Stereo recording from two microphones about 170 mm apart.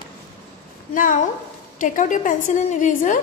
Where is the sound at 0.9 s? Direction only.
50° left (ahead or behind).